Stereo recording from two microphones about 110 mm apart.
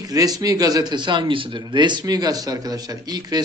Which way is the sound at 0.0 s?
35° right (ahead or behind).